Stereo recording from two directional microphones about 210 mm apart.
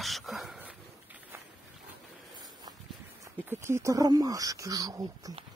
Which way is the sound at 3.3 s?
10° right (ahead or behind).